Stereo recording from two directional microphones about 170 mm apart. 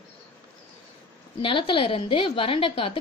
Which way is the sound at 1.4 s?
30° left (ahead or behind).